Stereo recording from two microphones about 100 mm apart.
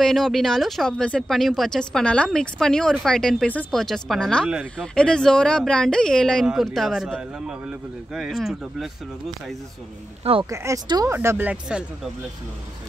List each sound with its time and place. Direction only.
0.0 s speech: 5° left (ahead or behind)
10.5 s speech: 30° right (ahead or behind)